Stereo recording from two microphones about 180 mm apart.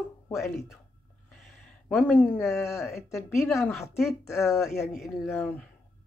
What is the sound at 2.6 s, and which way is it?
Speech, 15° left (ahead or behind).